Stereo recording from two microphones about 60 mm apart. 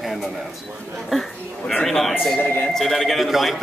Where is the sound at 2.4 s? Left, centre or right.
Left.